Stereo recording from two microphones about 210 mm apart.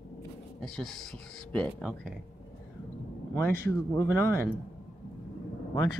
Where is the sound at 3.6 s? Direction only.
10° left (ahead or behind).